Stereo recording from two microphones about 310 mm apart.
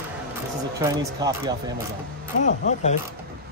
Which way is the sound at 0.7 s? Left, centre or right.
Centre.